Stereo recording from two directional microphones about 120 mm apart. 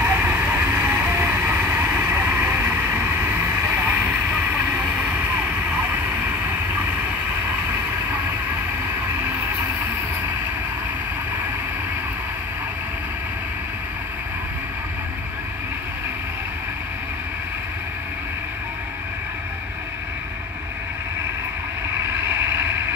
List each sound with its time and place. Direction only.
0.0 s vehicle: 15° right (ahead or behind)
22.3 s vehicle: 15° right (ahead or behind)